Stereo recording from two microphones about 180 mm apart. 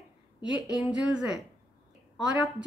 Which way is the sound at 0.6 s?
5° right (ahead or behind).